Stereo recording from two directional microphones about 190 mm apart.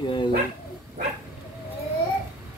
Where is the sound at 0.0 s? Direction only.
25° left (ahead or behind).